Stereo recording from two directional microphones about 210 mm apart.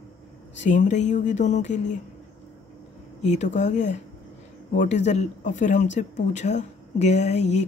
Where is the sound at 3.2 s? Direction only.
35° left (ahead or behind).